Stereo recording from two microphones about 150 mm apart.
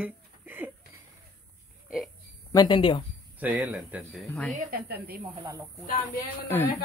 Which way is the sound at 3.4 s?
10° right (ahead or behind).